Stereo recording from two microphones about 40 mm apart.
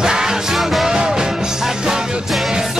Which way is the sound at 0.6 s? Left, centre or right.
Centre.